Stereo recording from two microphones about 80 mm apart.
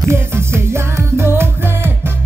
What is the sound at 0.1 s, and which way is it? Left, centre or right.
Music, right.